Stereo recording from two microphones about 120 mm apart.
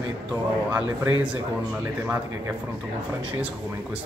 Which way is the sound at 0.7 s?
20° right (ahead or behind).